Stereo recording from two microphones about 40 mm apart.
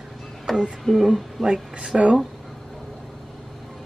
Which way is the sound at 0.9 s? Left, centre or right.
Centre.